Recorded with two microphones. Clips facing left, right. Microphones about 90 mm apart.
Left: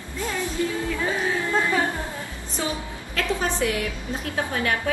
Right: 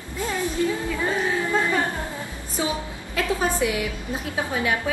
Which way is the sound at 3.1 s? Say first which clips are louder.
Right 2 dB; 15° right (ahead or behind).